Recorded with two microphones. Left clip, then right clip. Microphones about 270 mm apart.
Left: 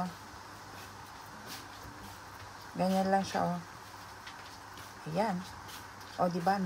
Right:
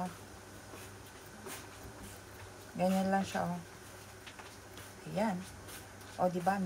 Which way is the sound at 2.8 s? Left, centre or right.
Centre.